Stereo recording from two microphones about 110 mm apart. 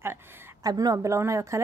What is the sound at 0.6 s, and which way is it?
Speech, 35° right (ahead or behind).